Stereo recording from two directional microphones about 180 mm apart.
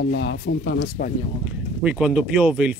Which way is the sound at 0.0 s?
75° left (ahead or behind).